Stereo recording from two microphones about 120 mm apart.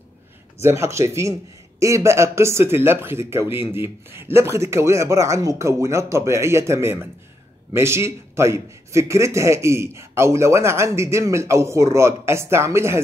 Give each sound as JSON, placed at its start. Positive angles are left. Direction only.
{"t": 0.6, "sound": "a man's voice", "side_deg": -25}